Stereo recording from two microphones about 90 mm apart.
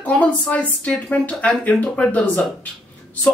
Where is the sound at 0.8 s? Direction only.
15° left (ahead or behind).